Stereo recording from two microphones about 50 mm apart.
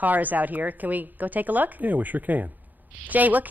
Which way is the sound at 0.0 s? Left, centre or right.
Right.